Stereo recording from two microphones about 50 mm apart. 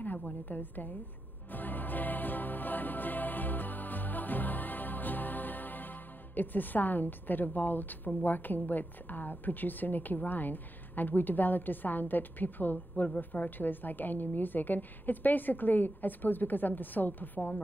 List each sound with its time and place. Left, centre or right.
0.5 s a woman's voice: left
1.5 s music: left
13.2 s a woman's voice: left